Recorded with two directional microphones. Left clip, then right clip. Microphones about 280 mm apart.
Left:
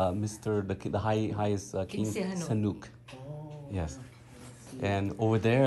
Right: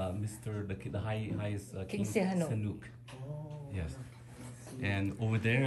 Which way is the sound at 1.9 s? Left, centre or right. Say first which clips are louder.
Even; right.